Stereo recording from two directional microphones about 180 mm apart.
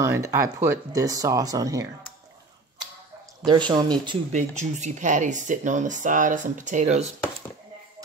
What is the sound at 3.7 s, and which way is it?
Speech, 25° right (ahead or behind).